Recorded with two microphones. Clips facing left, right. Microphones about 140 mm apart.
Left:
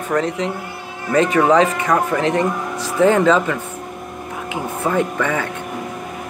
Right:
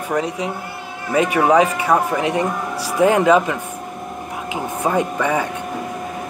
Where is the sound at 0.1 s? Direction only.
10° right (ahead or behind).